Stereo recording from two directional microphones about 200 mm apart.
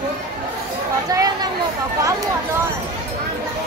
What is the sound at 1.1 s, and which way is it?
Chatter, 20° right (ahead or behind).